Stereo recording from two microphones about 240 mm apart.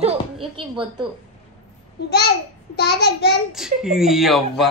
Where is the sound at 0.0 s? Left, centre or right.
Right.